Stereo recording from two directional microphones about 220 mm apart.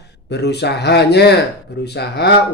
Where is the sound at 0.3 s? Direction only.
50° left (ahead or behind).